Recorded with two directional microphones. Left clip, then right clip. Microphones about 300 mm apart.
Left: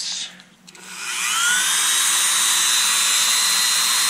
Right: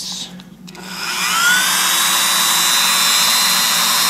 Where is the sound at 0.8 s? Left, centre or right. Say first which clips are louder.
Right 5 dB; centre.